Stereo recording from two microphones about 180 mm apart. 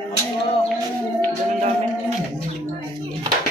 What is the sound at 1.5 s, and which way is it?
Music, 40° right (ahead or behind).